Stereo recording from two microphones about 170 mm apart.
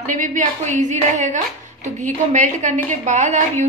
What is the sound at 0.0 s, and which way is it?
Speech, 50° right (ahead or behind).